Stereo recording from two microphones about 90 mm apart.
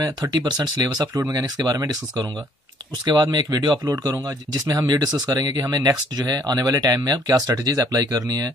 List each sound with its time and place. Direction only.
0.0 s speech: 40° right (ahead or behind)
3.2 s speech: 45° right (ahead or behind)